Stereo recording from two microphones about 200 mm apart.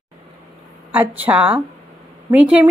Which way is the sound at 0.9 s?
10° right (ahead or behind).